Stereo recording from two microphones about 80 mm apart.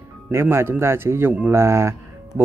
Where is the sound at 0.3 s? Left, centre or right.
Right.